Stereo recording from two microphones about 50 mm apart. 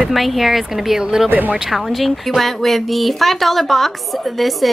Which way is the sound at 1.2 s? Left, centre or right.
Right.